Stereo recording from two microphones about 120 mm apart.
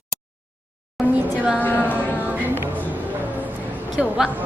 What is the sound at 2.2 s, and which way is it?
Music, 15° right (ahead or behind).